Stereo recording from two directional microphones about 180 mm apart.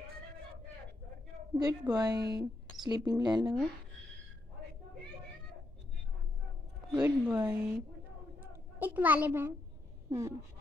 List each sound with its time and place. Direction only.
1.6 s a woman's voice: 20° right (ahead or behind)
6.9 s a child's voice: 5° right (ahead or behind)
8.7 s a child's voice: 10° right (ahead or behind)